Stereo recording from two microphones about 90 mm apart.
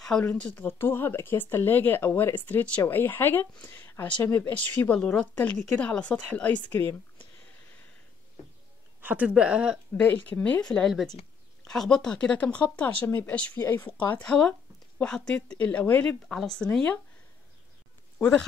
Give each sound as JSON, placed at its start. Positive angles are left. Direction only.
{"t": 0.2, "sound": "speech", "side_deg": 15}
{"t": 9.0, "sound": "a woman's voice", "side_deg": -15}
{"t": 10.0, "sound": "speech", "side_deg": 20}
{"t": 10.7, "sound": "speech", "side_deg": 5}
{"t": 16.3, "sound": "speech", "side_deg": 5}